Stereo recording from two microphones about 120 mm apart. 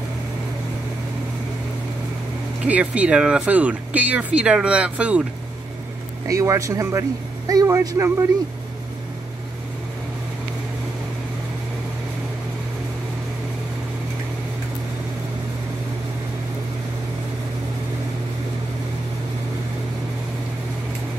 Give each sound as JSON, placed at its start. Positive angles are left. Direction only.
{"t": 2.6, "sound": "speech", "side_deg": -10}
{"t": 6.2, "sound": "a man's voice", "side_deg": -25}